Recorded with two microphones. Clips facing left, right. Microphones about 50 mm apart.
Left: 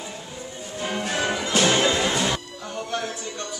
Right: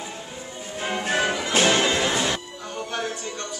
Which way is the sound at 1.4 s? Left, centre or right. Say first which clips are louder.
Left 2 dB; right.